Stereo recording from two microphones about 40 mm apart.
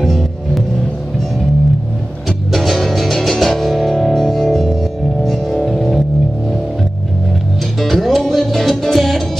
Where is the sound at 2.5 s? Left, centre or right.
Centre.